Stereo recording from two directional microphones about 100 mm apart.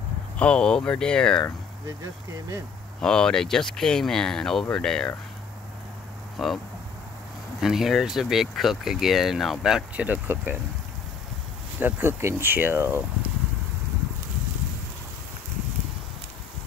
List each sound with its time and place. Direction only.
0.4 s speech: 10° left (ahead or behind)
3.0 s speech: 5° left (ahead or behind)
6.3 s speech: centre (ahead or behind)
7.6 s speech: 5° right (ahead or behind)
10.0 s speech: 20° right (ahead or behind)
11.8 s speech: 20° right (ahead or behind)